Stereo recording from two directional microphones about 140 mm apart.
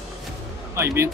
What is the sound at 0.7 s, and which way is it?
Speech, 20° right (ahead or behind).